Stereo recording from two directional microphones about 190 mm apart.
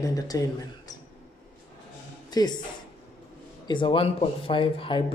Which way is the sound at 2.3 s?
20° left (ahead or behind).